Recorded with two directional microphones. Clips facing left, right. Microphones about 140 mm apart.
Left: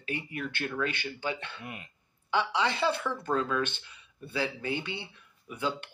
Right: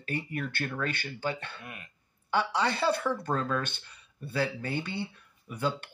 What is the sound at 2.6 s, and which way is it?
Speech, 40° right (ahead or behind).